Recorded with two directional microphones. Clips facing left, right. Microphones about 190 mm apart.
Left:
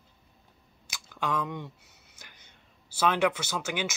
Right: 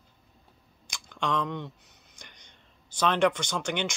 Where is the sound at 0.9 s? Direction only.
5° left (ahead or behind).